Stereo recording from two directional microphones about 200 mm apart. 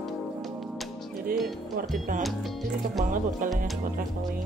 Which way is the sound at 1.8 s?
45° right (ahead or behind).